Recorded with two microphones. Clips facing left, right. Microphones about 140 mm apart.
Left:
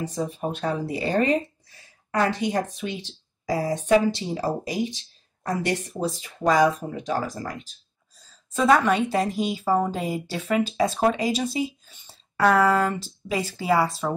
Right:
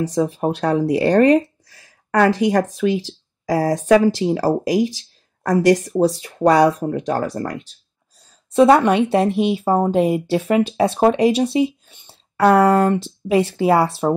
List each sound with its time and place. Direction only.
0.0 s speech: 80° right
5.9 s speech: 70° right (ahead or behind)
8.6 s speech: 30° right (ahead or behind)
9.3 s speech: 65° right (ahead or behind)
10.1 s speech: 30° right (ahead or behind)
10.6 s speech: 65° right (ahead or behind)
12.4 s speech: 30° right (ahead or behind)
12.7 s speech: 65° right (ahead or behind)
13.6 s speech: 30° right (ahead or behind)